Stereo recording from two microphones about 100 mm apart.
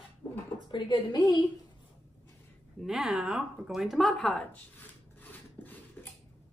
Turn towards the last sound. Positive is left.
turn(degrees=20)  # may be behind; listen again after turning